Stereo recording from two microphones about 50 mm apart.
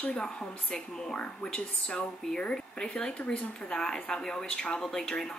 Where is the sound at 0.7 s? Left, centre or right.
Centre.